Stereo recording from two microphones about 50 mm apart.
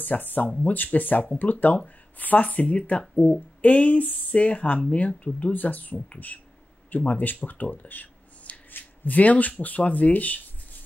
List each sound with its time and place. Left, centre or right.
0.0 s speech: left